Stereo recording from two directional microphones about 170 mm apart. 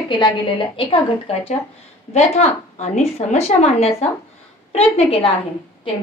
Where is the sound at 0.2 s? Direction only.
30° left (ahead or behind).